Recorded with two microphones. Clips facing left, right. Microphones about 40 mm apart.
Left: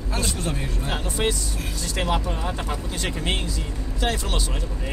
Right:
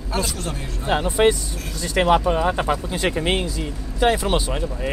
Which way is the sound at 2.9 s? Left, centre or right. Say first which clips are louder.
Right 6 dB; centre.